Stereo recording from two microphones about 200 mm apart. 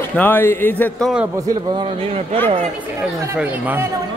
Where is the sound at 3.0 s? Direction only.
10° right (ahead or behind).